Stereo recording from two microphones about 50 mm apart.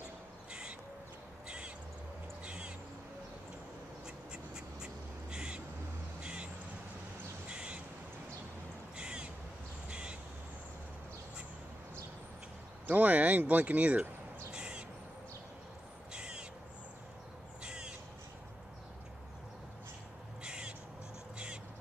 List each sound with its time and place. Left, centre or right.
0.5 s crow: centre
2.4 s cat: centre
4.0 s duck: centre
6.2 s crow: centre
8.9 s crow: centre
12.8 s speech: right
14.5 s crow: centre
16.1 s crow: centre
17.6 s crow: centre
20.4 s crow: centre